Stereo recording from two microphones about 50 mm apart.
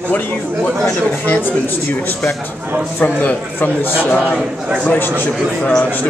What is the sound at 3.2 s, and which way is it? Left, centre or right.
A man's voice, left.